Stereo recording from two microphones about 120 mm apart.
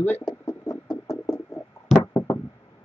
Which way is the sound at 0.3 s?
30° left (ahead or behind).